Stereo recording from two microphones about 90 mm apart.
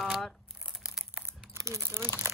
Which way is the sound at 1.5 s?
35° right (ahead or behind).